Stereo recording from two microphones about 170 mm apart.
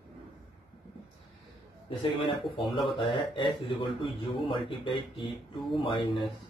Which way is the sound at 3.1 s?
30° left (ahead or behind).